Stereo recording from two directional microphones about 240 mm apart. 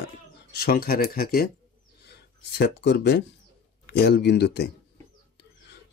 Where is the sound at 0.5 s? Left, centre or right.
Left.